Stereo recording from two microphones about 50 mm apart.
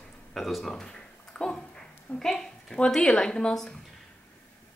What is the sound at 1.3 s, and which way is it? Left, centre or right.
A woman's voice, centre.